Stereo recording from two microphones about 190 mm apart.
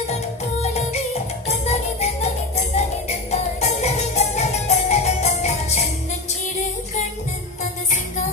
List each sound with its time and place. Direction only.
0.0 s music: 35° left (ahead or behind)